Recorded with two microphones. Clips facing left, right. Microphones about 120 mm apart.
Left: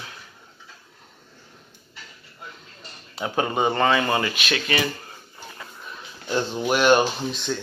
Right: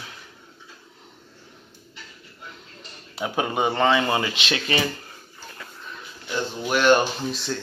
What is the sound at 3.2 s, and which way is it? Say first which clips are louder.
Speech: left 1 dB; 5° right (ahead or behind).